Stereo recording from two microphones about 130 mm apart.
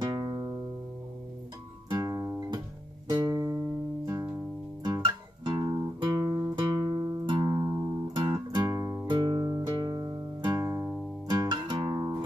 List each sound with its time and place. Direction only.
0.0 s music: 25° right (ahead or behind)
1.9 s music: 25° right (ahead or behind)
7.4 s music: 25° right (ahead or behind)
9.1 s music: 35° right (ahead or behind)
11.2 s guitar: 30° right (ahead or behind)